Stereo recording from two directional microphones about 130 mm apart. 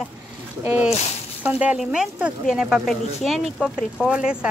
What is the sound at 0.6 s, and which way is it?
Speech, 15° right (ahead or behind).